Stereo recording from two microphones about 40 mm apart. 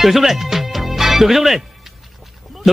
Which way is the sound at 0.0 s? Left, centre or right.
Centre.